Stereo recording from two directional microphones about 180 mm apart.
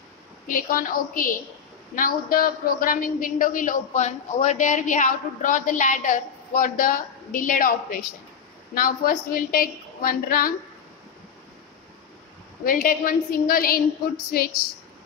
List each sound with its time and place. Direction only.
0.5 s a woman's voice: 50° left (ahead or behind)
12.6 s a woman's voice: 50° left (ahead or behind)